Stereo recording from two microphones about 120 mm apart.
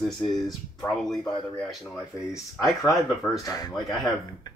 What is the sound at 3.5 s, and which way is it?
Speech, 30° left (ahead or behind).